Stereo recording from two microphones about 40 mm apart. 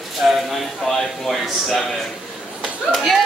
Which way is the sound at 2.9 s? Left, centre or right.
Centre.